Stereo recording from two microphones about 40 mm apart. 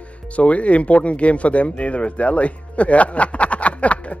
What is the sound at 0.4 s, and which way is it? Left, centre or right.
Speech, left.